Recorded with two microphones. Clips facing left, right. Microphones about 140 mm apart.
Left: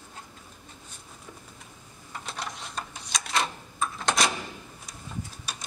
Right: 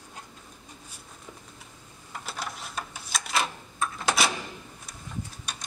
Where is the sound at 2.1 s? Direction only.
5° right (ahead or behind).